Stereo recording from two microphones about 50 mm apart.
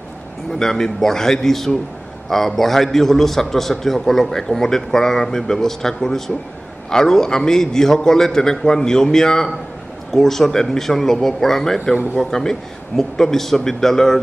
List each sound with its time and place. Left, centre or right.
0.5 s a man's voice: centre